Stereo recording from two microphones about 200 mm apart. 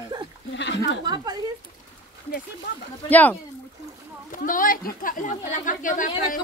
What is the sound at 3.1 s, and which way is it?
Speech, 10° left (ahead or behind).